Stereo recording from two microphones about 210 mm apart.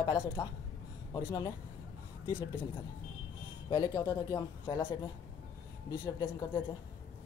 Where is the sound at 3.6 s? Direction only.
20° left (ahead or behind).